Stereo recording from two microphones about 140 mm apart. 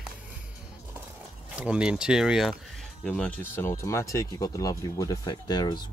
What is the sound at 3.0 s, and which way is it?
Speech, 5° left (ahead or behind).